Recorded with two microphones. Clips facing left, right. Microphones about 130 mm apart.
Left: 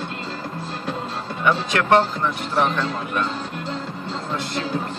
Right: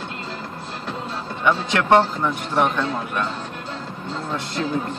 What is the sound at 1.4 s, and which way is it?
A man's voice, 15° right (ahead or behind).